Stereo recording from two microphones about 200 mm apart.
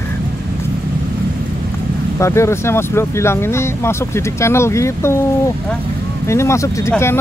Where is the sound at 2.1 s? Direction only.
15° left (ahead or behind).